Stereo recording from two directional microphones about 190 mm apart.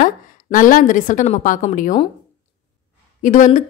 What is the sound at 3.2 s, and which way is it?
Speech, 45° left (ahead or behind).